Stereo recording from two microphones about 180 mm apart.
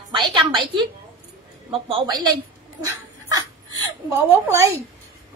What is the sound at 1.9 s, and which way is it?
Speech, 25° right (ahead or behind).